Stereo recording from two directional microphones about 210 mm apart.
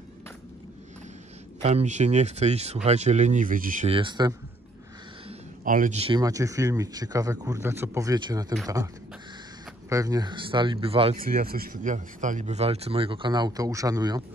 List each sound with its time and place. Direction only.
1.6 s speech: 30° right (ahead or behind)
3.9 s speech: 20° right (ahead or behind)
5.7 s speech: 35° right (ahead or behind); by 8.5 s 20° right (ahead or behind)
9.8 s speech: 15° right (ahead or behind)
11.1 s speech: 45° right (ahead or behind); by 14.2 s 20° right (ahead or behind)